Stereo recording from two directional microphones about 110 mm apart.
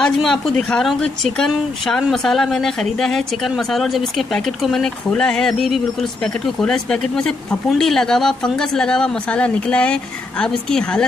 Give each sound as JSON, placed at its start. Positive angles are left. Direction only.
{"t": 0.0, "sound": "a woman's voice", "side_deg": 5}